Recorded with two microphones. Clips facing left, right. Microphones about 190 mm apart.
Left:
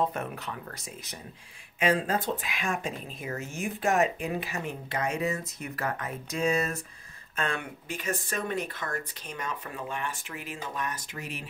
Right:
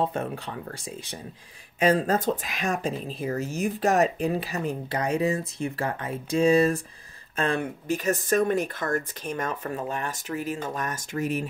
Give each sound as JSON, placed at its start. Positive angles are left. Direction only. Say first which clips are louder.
{"t": 0.0, "sound": "speech", "louder": "right 3 dB", "side_deg": -30}
{"t": 1.8, "sound": "speech", "louder": "right 5 dB", "side_deg": -40}